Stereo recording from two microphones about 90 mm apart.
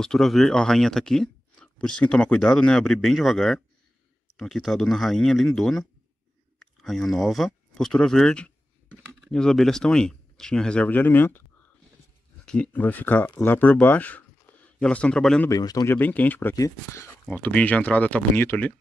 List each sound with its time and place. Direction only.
0.0 s speech: 5° left (ahead or behind); by 11.4 s 25° left (ahead or behind)
12.4 s speech: 10° left (ahead or behind)
12.7 s speech: 20° left (ahead or behind)
15.5 s speech: 40° left (ahead or behind)
15.9 s speech: 20° left (ahead or behind)
16.5 s speech: 35° left (ahead or behind)
17.3 s speech: 15° left (ahead or behind)